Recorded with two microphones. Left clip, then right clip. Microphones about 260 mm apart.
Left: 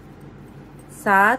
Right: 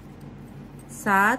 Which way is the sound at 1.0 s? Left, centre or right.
Centre.